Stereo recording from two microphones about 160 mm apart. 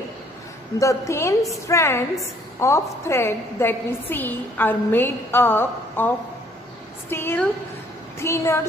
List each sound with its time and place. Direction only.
0.7 s a woman's voice: 20° left (ahead or behind)